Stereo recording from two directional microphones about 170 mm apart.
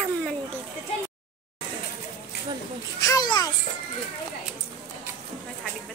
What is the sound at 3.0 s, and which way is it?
Children playing, 20° left (ahead or behind).